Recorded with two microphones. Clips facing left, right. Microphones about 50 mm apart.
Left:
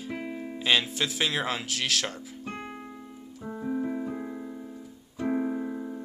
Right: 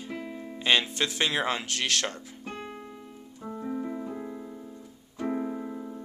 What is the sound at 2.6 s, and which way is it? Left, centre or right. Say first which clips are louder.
Keyboard: even; left.